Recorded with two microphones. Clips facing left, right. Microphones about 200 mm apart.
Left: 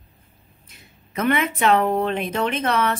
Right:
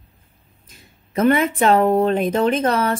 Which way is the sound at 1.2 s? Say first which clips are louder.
Right 4 dB; 30° right (ahead or behind).